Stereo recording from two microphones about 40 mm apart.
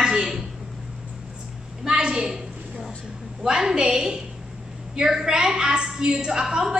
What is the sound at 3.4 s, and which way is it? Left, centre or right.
A woman's voice, centre.